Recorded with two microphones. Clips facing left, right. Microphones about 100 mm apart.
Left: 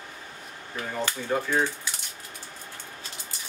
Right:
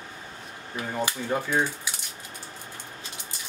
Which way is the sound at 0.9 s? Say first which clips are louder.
Even; 15° right (ahead or behind).